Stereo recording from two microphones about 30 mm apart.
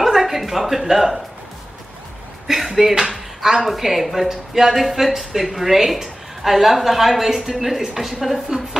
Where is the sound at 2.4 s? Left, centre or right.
Centre.